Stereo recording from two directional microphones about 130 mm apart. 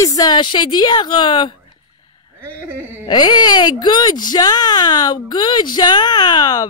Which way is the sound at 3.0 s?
35° left (ahead or behind).